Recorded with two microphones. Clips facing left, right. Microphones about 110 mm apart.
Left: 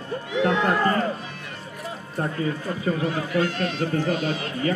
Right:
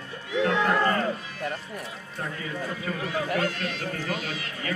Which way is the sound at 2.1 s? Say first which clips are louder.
Left 7 dB; 35° left (ahead or behind).